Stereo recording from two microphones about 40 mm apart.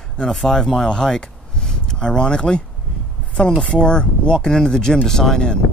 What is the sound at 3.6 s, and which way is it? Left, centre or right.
Speech, left.